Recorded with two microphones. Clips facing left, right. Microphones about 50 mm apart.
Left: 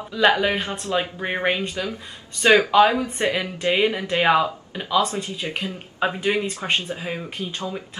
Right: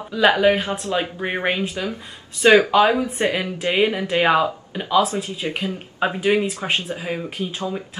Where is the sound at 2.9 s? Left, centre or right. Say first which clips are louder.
Right 2 dB; right.